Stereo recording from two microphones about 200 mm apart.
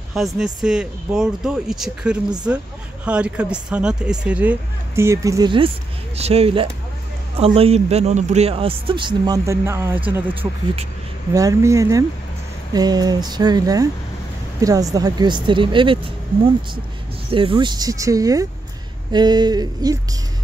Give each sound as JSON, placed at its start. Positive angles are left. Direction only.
{"t": 0.1, "sound": "speech", "side_deg": 0}
{"t": 17.3, "sound": "speech", "side_deg": -25}